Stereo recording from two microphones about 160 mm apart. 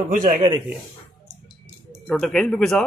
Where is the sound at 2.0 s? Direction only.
5° left (ahead or behind).